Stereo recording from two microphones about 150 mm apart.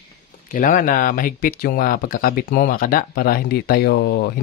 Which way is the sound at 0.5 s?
60° left (ahead or behind).